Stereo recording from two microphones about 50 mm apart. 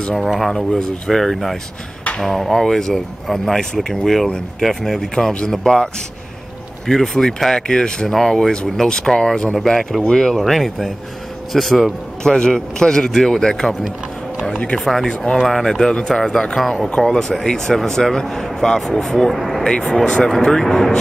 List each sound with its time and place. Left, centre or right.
0.1 s speech: centre
6.9 s speech: centre
12.2 s speech: centre
14.5 s speech: left
14.8 s speech: centre